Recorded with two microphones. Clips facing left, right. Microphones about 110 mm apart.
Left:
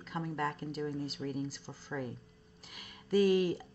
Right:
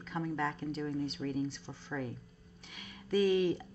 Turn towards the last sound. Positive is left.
turn(degrees=0)  # may be behind; listen again after turning